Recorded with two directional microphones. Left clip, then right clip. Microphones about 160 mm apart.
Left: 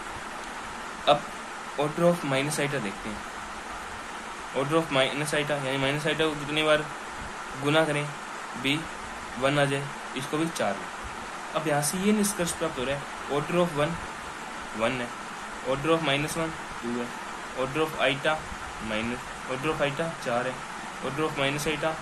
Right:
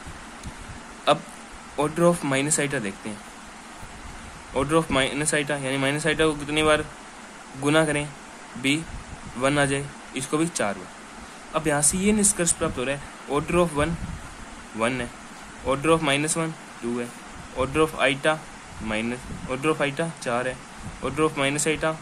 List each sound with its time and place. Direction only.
1.1 s speech: 60° right (ahead or behind)
4.6 s speech: 60° right (ahead or behind)
17.6 s speech: 60° right (ahead or behind)
19.6 s speech: 60° right (ahead or behind)